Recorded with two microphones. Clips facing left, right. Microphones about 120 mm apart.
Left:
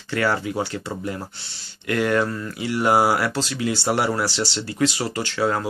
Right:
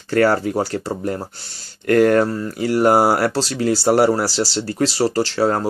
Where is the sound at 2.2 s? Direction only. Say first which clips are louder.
Right 5 dB; 35° right (ahead or behind).